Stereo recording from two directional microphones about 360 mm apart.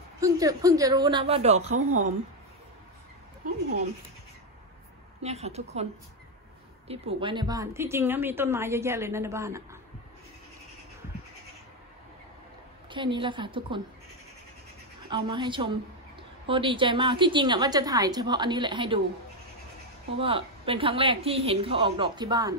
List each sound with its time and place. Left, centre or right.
0.2 s a woman's voice: centre
5.2 s a woman's voice: centre
6.9 s a woman's voice: centre
12.9 s a woman's voice: centre
15.0 s a woman's voice: centre
20.2 s a woman's voice: centre